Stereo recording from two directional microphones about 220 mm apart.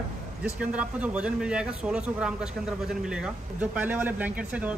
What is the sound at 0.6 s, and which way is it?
Speech, 5° right (ahead or behind).